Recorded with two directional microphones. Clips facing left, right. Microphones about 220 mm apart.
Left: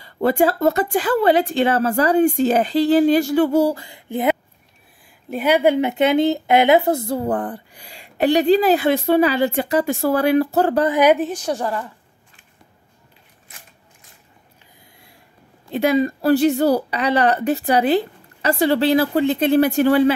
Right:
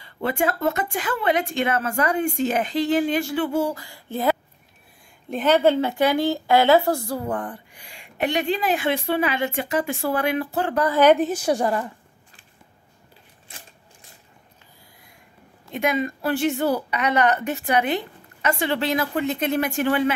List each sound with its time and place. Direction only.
0.0 s speech: 40° left (ahead or behind)
3.8 s a sound: 20° left (ahead or behind)
5.3 s a woman's voice: 10° left (ahead or behind)
7.2 s speech: 35° left (ahead or behind)
10.8 s speech: 15° left (ahead or behind)
11.1 s a woman's voice: 5° right (ahead or behind)
13.5 s typewriter: 30° right (ahead or behind)
15.7 s speech: 35° left (ahead or behind)